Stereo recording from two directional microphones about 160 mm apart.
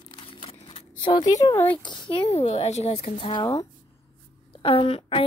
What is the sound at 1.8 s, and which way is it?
Speech, 30° left (ahead or behind).